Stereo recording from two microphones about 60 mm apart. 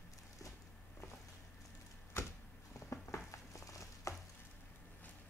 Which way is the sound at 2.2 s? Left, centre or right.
Left.